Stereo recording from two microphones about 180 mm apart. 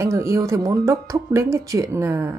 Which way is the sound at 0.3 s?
15° right (ahead or behind).